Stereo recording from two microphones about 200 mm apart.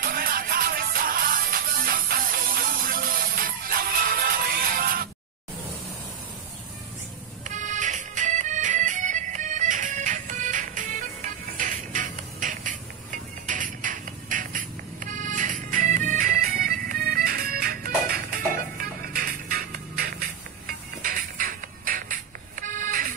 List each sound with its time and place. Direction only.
0.0 s music: 45° right (ahead or behind)
7.4 s music: 40° right (ahead or behind)